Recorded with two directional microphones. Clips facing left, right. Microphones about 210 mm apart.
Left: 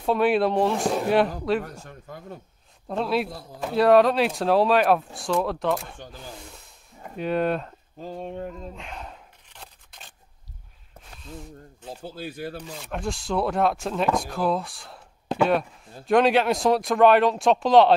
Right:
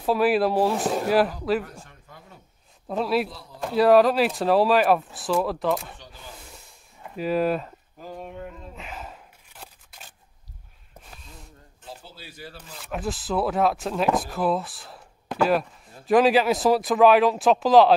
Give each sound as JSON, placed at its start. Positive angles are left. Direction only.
{"t": 0.0, "sound": "speech", "side_deg": -5}
{"t": 1.6, "sound": "a sound", "side_deg": 45}
{"t": 2.9, "sound": "speech", "side_deg": 0}
{"t": 3.3, "sound": "speech", "side_deg": 50}
{"t": 3.6, "sound": "speech", "side_deg": 0}
{"t": 7.2, "sound": "speech", "side_deg": -5}
{"t": 8.0, "sound": "a sound", "side_deg": 30}
{"t": 8.7, "sound": "a sound", "side_deg": -5}
{"t": 12.0, "sound": "speech", "side_deg": 55}
{"t": 12.8, "sound": "speech", "side_deg": -5}